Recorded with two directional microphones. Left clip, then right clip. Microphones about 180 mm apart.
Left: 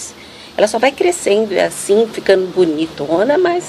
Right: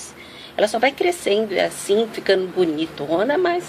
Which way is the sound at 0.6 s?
5° left (ahead or behind).